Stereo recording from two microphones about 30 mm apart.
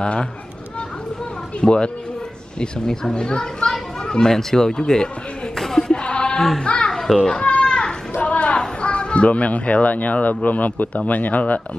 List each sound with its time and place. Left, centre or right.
0.0 s speech: left
1.6 s speech: left
2.9 s speech: left
4.0 s chatter: left
4.3 s speech: centre
5.6 s a sound: centre
5.9 s sheep: left
6.6 s a child's voice: left
7.2 s a child's voice: left
7.5 s children playing: left
8.2 s a sound: left
8.5 s speech: left